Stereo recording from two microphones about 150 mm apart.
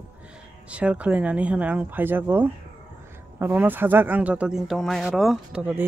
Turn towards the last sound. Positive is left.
turn(degrees=-10)  # may be behind; listen again after turning